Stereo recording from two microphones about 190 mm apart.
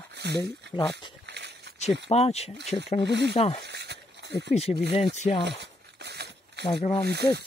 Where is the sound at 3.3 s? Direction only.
35° left (ahead or behind).